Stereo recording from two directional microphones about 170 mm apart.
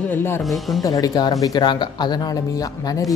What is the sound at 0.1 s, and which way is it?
Speech, 15° left (ahead or behind).